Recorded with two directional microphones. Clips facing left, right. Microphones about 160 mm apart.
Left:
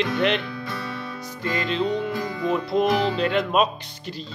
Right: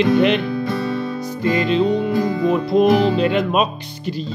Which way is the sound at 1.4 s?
10° right (ahead or behind).